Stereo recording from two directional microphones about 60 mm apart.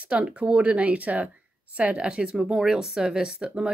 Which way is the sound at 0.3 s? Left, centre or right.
Right.